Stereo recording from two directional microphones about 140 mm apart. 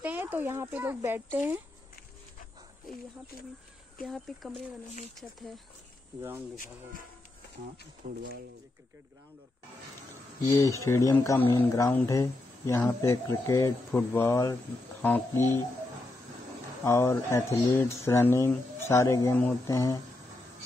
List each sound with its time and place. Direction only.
0.0 s a child's voice: 10° right (ahead or behind)
4.0 s speech: centre (ahead or behind)
8.0 s speech: 55° right (ahead or behind)
10.4 s speech: 20° left (ahead or behind)
15.0 s a sound: 10° left (ahead or behind)
16.8 s speech: 20° left (ahead or behind)